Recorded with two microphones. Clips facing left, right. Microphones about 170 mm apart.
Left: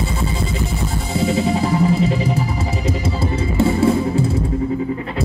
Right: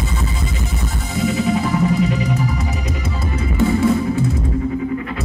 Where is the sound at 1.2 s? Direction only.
30° left (ahead or behind).